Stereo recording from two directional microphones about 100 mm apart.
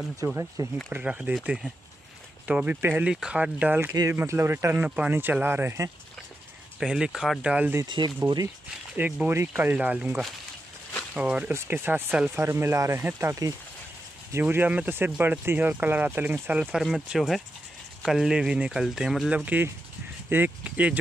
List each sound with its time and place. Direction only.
0.2 s speech: 35° right (ahead or behind)
0.8 s speech: 15° right (ahead or behind)
4.7 s speech: 10° right (ahead or behind)
6.8 s speech: 5° right (ahead or behind)
7.8 s speech: 50° right (ahead or behind)
8.9 s speech: 15° right (ahead or behind)
11.5 s speech: 25° right (ahead or behind)
14.4 s speech: 20° right (ahead or behind)
19.3 s speech: 15° right (ahead or behind)